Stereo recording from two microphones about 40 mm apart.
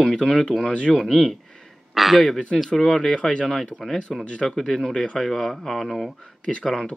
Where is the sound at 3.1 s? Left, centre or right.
Centre.